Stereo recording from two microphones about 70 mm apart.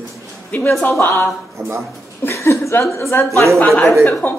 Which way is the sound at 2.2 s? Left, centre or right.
Left.